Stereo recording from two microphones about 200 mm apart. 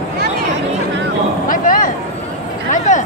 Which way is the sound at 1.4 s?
45° left (ahead or behind).